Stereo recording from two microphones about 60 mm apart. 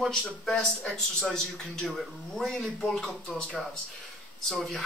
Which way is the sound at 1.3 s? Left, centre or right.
Centre.